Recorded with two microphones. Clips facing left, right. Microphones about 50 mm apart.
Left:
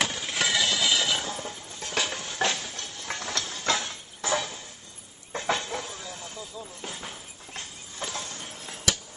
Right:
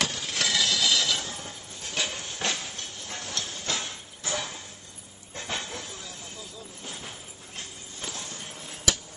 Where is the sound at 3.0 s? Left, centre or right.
Left.